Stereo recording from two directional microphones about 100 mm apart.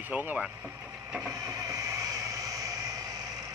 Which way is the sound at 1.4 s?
40° right (ahead or behind).